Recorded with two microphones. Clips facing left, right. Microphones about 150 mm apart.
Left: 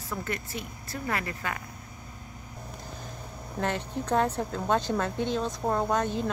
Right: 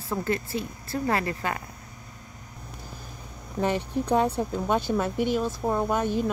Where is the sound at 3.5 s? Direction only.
15° right (ahead or behind).